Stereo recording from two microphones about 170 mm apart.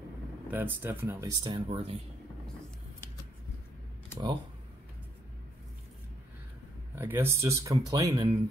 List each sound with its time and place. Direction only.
0.5 s speech: 10° right (ahead or behind)
1.4 s speech: 30° right (ahead or behind)
7.0 s speech: 15° right (ahead or behind)